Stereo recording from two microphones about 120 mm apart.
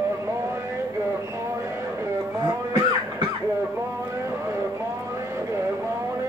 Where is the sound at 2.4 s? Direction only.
35° right (ahead or behind).